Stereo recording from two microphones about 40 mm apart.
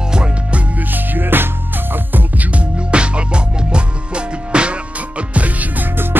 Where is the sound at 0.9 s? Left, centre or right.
Right.